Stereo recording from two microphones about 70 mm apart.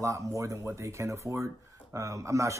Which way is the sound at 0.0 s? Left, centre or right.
Right.